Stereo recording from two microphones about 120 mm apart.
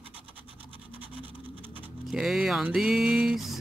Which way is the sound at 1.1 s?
50° right (ahead or behind).